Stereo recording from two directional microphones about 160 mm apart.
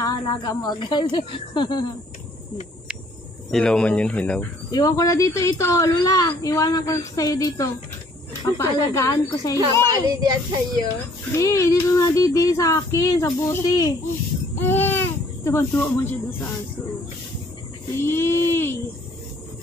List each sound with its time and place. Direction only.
0.0 s speech: 25° left (ahead or behind)
3.5 s speech: 5° left (ahead or behind)
4.6 s speech: 25° left (ahead or behind)
10.0 s a child's voice: 25° right (ahead or behind)
11.3 s speech: 20° left (ahead or behind)
17.9 s speech: 15° left (ahead or behind)